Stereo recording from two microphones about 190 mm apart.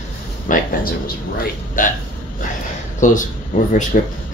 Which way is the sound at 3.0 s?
45° left (ahead or behind).